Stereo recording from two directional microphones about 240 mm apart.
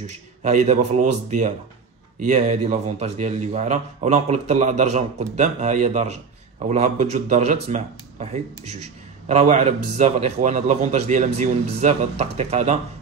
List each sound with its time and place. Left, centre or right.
0.0 s speech: right